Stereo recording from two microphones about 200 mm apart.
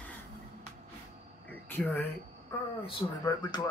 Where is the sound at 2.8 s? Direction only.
25° left (ahead or behind).